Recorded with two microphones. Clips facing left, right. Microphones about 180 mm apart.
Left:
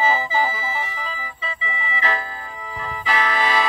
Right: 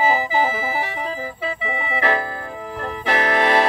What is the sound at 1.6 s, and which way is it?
Music, 60° right (ahead or behind).